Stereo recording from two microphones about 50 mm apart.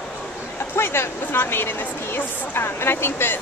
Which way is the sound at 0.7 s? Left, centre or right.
Left.